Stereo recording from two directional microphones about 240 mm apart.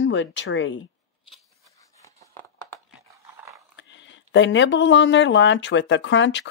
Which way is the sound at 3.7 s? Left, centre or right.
Left.